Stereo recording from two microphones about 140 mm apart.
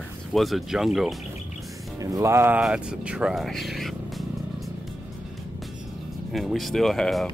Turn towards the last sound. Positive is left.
turn(degrees=0)  # may be behind; listen again after turning